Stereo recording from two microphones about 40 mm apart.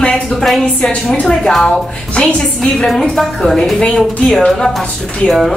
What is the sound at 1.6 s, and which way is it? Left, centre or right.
A woman's voice, left.